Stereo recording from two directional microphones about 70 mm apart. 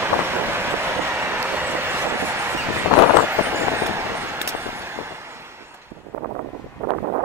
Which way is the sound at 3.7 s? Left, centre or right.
Right.